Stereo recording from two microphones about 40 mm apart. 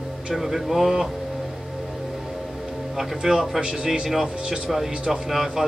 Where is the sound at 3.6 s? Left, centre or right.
Right.